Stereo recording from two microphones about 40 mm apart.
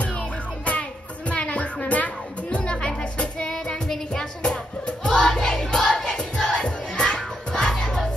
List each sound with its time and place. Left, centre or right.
0.0 s music: left
7.8 s crowd: centre